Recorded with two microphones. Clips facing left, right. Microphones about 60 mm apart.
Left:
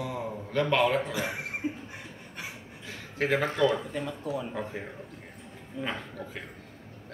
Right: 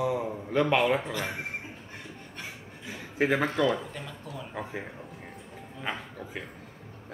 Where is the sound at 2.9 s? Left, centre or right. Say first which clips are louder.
Right 2 dB; centre.